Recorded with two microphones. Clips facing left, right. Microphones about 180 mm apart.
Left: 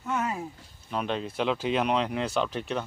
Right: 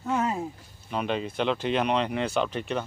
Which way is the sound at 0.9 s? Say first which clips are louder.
Right 1 dB; centre (ahead or behind).